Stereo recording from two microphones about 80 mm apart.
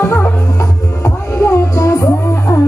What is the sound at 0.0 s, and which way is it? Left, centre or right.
Music, left.